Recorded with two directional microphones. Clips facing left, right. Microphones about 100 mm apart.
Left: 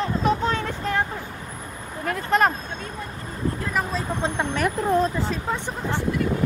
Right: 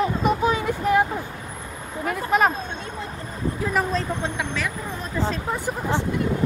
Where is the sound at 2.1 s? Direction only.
5° right (ahead or behind).